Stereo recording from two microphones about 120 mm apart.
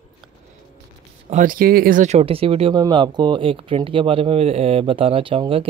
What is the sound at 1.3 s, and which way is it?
Speech, 70° right (ahead or behind).